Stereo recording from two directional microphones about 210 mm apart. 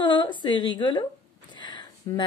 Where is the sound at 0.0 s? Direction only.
20° left (ahead or behind).